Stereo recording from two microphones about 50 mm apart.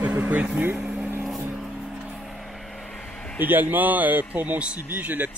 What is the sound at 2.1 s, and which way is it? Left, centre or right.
Vehicle, centre.